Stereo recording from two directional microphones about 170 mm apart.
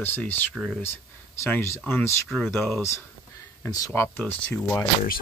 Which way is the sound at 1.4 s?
15° left (ahead or behind).